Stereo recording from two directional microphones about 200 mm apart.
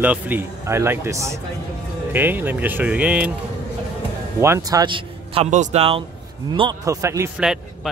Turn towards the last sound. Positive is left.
turn(degrees=-15)  # may be behind; listen again after turning